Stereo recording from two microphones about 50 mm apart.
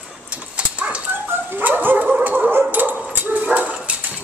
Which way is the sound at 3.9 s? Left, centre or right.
Right.